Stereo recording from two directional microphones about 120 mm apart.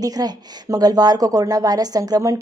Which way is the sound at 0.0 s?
30° right (ahead or behind).